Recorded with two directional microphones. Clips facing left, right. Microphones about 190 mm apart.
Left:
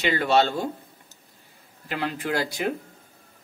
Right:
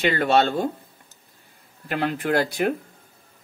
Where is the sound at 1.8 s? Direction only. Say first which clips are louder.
Right 4 dB; 55° right (ahead or behind).